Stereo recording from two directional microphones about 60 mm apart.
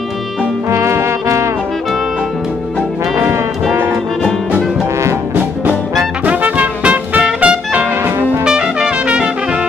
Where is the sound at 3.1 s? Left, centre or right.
Right.